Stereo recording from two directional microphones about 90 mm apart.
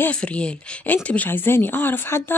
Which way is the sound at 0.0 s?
15° left (ahead or behind).